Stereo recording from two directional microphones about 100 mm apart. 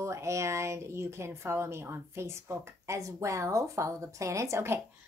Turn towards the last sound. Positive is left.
turn(degrees=-25)  # may be behind; listen again after turning